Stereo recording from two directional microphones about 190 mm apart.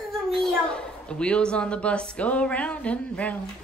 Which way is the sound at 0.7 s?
5° left (ahead or behind).